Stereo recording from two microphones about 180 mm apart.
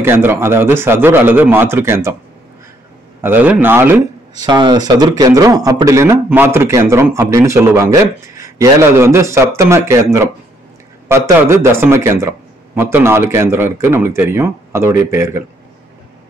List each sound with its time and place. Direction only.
0.0 s speech: 15° right (ahead or behind)
3.2 s speech: 10° right (ahead or behind)